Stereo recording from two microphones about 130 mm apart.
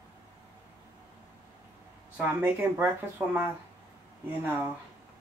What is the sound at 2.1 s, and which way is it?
Speech, 15° right (ahead or behind).